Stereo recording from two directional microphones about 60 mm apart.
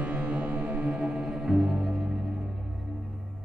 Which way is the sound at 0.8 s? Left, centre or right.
Centre.